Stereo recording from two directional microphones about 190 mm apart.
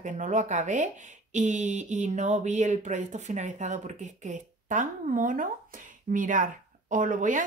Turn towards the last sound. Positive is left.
turn(degrees=-40)  # may be behind; listen again after turning